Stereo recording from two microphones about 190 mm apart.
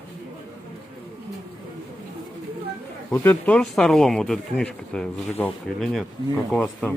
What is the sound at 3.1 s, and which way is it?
Speech, 10° left (ahead or behind).